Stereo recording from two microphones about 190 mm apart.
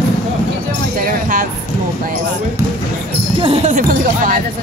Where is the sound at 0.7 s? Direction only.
45° right (ahead or behind).